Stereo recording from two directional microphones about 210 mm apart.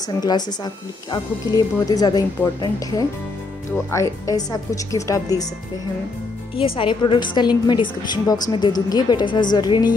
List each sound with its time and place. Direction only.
0.2 s a woman's voice: 20° left (ahead or behind)
6.5 s a woman's voice: 25° left (ahead or behind)